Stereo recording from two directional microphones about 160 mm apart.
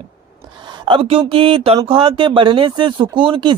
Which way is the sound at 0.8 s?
35° right (ahead or behind).